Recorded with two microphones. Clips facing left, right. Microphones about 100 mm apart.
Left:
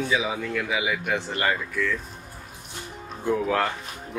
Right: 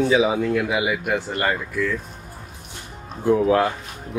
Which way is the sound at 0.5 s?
5° right (ahead or behind).